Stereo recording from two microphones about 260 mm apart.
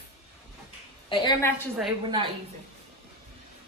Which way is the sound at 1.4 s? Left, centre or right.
Centre.